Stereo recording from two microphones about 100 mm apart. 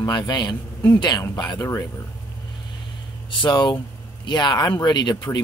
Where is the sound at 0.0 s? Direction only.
40° left (ahead or behind).